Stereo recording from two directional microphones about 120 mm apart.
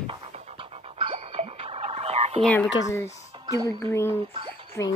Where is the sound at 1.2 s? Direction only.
60° right (ahead or behind).